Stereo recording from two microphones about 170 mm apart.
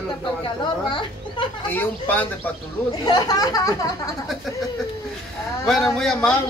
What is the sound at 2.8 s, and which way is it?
Speech, 20° left (ahead or behind).